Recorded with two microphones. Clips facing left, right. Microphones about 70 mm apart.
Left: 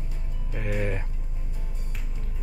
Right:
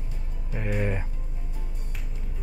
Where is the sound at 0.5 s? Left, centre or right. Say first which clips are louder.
Right 1 dB; centre.